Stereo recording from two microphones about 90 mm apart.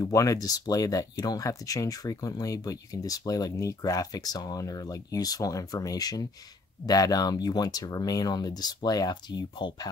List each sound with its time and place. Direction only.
0.0 s speech: 40° left (ahead or behind); by 9.8 s 55° left (ahead or behind)